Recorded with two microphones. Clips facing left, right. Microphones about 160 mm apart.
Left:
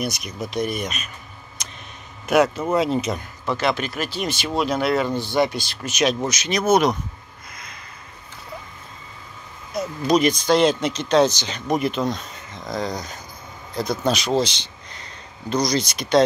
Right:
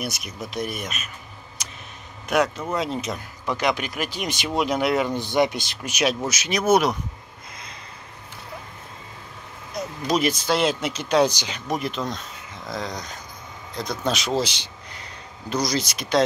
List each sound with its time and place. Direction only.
0.0 s speech: 5° right (ahead or behind)
1.6 s a sound: 5° right (ahead or behind)
2.2 s speech: 5° left (ahead or behind)
3.4 s speech: 15° right (ahead or behind)
9.8 s speech: centre (ahead or behind)